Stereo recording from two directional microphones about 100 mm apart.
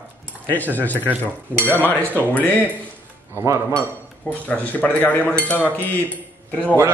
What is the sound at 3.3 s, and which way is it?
Speech, 30° right (ahead or behind).